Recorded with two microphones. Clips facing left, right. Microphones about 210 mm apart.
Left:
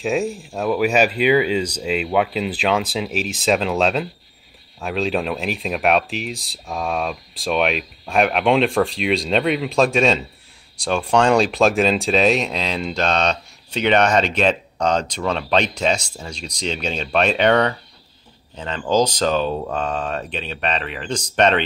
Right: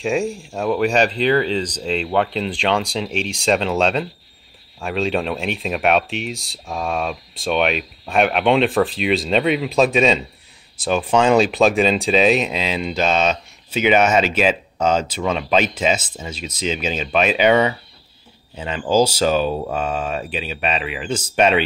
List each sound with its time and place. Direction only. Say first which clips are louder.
0.0 s speech: right 1 dB; centre (ahead or behind)